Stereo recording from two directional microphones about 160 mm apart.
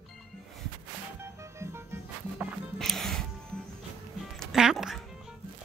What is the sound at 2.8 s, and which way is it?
Music, centre (ahead or behind).